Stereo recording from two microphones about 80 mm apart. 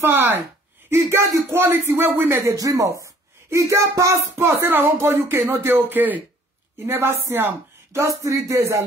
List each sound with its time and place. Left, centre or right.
0.0 s speech: right
1.5 s speech: right
2.3 s speech: right